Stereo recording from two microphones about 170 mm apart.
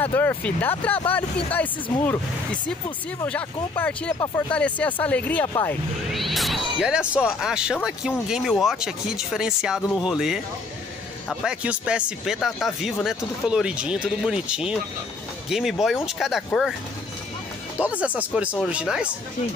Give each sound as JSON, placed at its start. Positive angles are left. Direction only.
{"t": 0.0, "sound": "speech", "side_deg": 10}
{"t": 6.1, "sound": "speech", "side_deg": 0}
{"t": 11.4, "sound": "speech", "side_deg": -5}
{"t": 17.7, "sound": "speech", "side_deg": -10}